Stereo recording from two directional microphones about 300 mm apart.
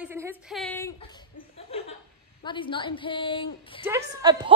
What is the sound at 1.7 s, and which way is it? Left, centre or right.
Chuckle, centre.